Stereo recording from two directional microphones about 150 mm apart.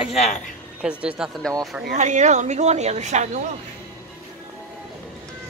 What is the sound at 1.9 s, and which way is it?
Speech, 55° right (ahead or behind).